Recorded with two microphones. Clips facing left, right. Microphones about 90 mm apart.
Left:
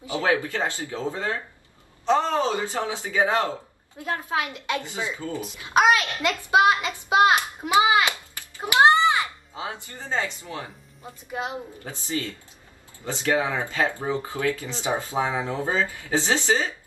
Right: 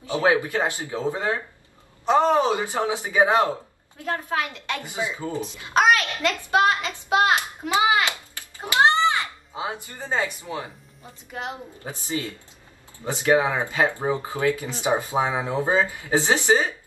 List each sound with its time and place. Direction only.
0.2 s speech: 20° right (ahead or behind)
4.0 s a child's voice: 20° left (ahead or behind)
4.8 s speech: 20° right (ahead or behind)
5.7 s a child's voice: 20° left (ahead or behind)
8.4 s a sound: 20° left (ahead or behind)
9.6 s speech: 20° right (ahead or behind)
11.8 s speech: 20° right (ahead or behind)